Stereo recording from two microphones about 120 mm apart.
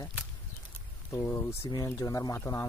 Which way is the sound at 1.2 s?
20° left (ahead or behind).